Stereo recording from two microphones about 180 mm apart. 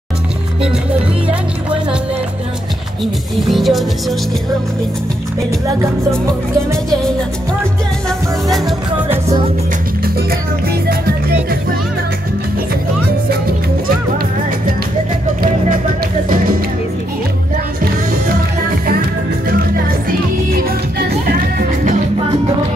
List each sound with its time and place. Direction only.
3.4 s music: centre (ahead or behind)
8.5 s music: centre (ahead or behind)
10.7 s music: 60° right (ahead or behind)
20.1 s music: 55° right (ahead or behind)